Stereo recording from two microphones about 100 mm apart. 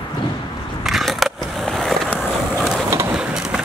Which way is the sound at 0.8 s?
Centre (ahead or behind).